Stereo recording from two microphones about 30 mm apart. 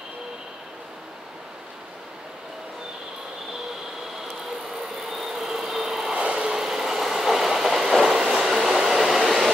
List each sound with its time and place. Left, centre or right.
5.1 s vehicle: centre
6.1 s vehicle: right
6.5 s vehicle: centre
8.0 s train: centre